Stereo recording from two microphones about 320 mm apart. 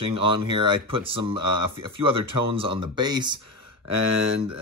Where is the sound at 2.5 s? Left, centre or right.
Centre.